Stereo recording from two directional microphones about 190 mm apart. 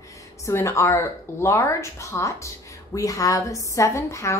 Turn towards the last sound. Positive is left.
turn(degrees=15)  # may be behind; listen again after turning